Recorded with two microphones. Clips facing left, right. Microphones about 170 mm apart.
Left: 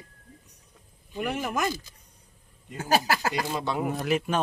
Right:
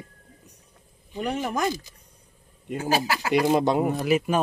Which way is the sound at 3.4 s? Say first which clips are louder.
Right 8 dB; 50° right (ahead or behind).